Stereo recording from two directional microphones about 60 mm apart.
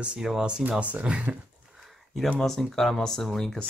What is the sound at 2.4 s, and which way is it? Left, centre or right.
Speech, centre.